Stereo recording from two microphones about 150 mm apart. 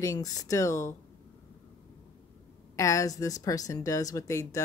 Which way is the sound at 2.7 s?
20° left (ahead or behind).